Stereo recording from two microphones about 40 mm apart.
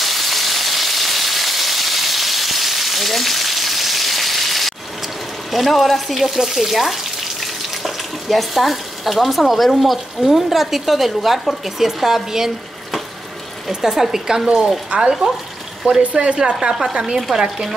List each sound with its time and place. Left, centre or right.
0.0 s a sound: centre
9.8 s speech: centre
13.7 s speech: centre
16.0 s speech: right
16.3 s speech: centre